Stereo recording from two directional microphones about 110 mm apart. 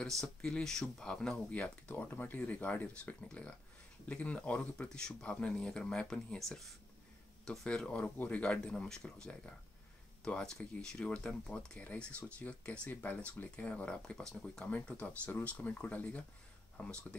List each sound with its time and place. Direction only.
0.0 s speech: 5° left (ahead or behind)